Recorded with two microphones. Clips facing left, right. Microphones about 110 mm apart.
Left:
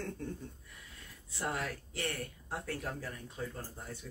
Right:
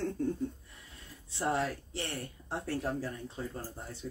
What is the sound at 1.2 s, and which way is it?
Speech, 30° right (ahead or behind).